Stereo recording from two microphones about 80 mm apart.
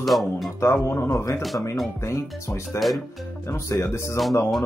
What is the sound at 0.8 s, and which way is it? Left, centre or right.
Speech, left.